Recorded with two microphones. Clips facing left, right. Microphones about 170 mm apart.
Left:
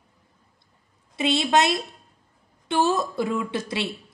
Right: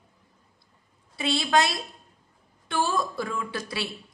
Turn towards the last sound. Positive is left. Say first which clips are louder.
# left 5 dB
turn(degrees=20)  # may be behind; listen again after turning